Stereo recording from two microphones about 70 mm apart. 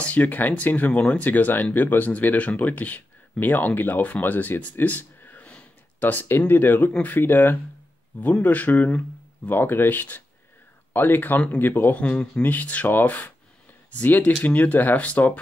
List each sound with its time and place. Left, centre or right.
0.0 s speech: left